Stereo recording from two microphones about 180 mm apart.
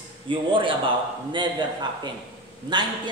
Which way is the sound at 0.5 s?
30° right (ahead or behind).